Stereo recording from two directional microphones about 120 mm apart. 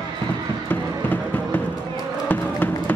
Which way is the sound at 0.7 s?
15° left (ahead or behind).